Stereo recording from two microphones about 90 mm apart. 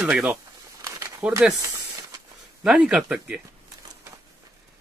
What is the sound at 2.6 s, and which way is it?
Speech, 10° right (ahead or behind).